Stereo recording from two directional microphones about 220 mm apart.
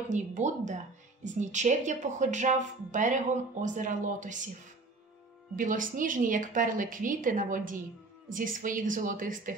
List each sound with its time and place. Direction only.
0.1 s a woman's voice: 35° right (ahead or behind)
5.6 s a woman's voice: 35° right (ahead or behind)